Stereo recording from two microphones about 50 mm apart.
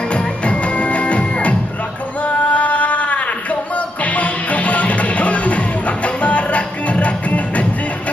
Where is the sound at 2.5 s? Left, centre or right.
Left.